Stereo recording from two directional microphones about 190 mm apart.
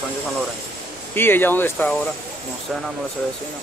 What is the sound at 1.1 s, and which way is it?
Speech, 10° left (ahead or behind).